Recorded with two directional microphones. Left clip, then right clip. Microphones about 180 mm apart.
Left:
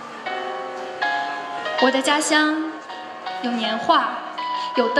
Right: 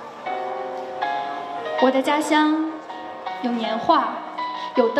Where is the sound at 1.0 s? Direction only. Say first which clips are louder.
Left 3 dB; 50° left (ahead or behind).